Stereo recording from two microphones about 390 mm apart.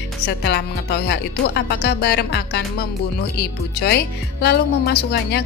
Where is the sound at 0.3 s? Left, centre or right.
Left.